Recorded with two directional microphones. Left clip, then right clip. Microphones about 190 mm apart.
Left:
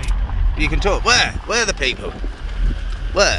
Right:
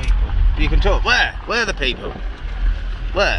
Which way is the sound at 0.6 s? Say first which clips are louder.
Left 2 dB; 15° left (ahead or behind).